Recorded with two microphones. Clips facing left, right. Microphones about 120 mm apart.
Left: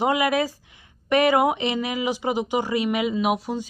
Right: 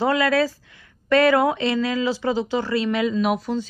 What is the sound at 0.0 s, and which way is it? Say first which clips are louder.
A woman's voice: right 2 dB; 15° left (ahead or behind).